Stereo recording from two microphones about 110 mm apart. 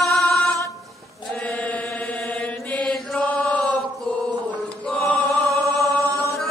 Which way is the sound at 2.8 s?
10° left (ahead or behind).